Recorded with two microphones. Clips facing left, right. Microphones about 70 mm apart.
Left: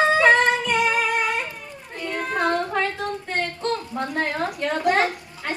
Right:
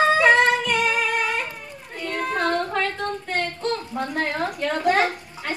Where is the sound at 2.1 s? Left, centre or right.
Centre.